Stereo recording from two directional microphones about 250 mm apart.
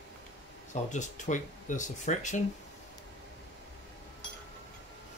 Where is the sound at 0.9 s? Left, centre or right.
Left.